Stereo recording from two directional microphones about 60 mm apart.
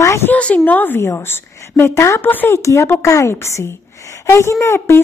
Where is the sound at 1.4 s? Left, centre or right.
Left.